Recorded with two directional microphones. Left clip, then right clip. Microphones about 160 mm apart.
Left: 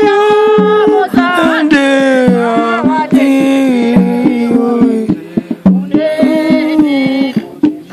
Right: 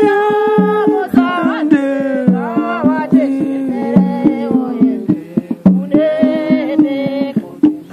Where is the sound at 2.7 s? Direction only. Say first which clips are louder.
Left 4 dB; 50° right (ahead or behind).